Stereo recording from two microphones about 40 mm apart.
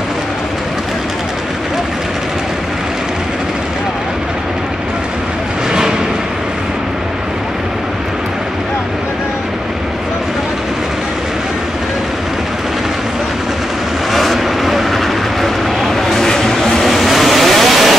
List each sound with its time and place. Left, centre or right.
5.7 s a sound: centre
14.1 s vehicle: centre
16.8 s vehicle: centre